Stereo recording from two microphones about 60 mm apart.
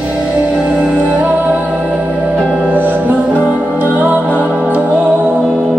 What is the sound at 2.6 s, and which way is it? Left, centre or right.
Music, right.